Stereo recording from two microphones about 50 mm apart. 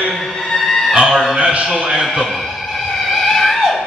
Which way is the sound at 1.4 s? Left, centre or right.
Right.